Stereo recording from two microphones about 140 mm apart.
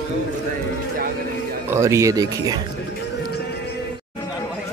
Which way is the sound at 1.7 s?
20° right (ahead or behind).